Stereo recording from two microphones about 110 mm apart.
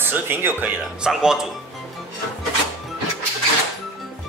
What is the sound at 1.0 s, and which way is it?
Speech, 5° right (ahead or behind).